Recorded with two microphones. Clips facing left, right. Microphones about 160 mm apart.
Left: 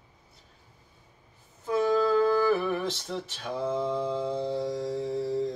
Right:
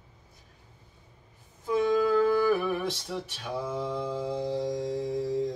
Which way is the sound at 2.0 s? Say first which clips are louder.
Even; 15° right (ahead or behind).